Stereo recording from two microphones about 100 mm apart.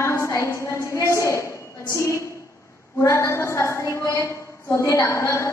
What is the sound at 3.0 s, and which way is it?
A woman's voice, 30° left (ahead or behind).